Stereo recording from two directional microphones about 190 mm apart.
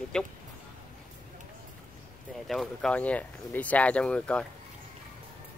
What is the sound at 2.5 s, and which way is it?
Speech, centre (ahead or behind).